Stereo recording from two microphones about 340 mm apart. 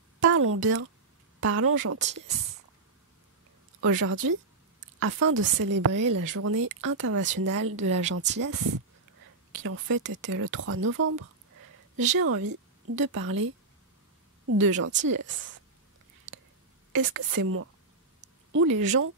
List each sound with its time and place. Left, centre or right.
0.2 s speech: right
3.8 s a woman's voice: right
5.9 s speech: right
6.3 s speech: right
8.1 s speech: right
8.4 s a woman's voice: right
16.9 s speech: right